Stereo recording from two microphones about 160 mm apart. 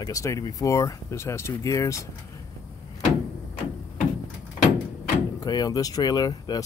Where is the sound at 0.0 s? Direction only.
20° left (ahead or behind).